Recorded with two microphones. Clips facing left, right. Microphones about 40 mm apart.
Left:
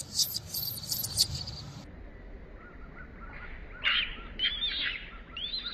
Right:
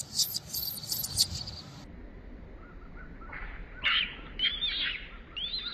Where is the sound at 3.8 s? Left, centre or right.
Centre.